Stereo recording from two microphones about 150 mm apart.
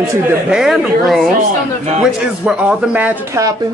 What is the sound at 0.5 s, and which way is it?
Speech, centre (ahead or behind).